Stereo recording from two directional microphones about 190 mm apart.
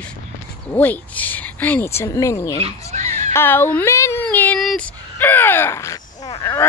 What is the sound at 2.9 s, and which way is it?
Dog, 40° right (ahead or behind).